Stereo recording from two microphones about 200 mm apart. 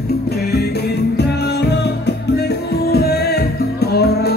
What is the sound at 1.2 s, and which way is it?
Music, 55° left (ahead or behind).